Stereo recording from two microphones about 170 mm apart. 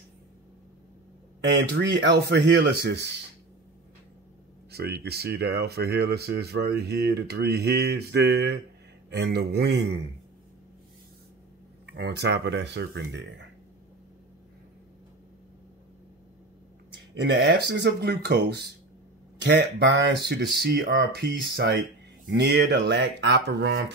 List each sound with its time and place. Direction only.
1.4 s speech: 90° right
4.6 s speech: 70° right (ahead or behind)
11.8 s speech: 80° right
17.1 s speech: 90° right; by 18.7 s 75° right (ahead or behind)
19.4 s speech: 90° right